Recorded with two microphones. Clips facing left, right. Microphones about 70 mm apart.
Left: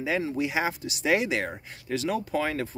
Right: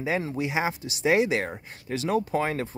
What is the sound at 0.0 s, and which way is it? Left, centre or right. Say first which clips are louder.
Speech: even; right.